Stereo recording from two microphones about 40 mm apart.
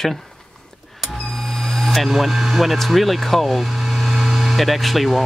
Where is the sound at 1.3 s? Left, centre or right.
Centre.